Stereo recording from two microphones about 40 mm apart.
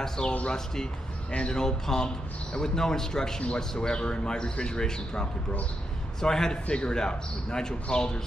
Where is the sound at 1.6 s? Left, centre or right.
Centre.